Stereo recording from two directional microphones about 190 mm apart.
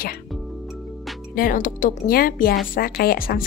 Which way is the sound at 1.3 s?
45° left (ahead or behind).